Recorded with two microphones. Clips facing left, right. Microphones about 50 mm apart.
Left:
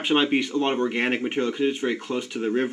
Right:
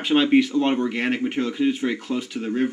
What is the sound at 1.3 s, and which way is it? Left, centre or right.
Speech, centre.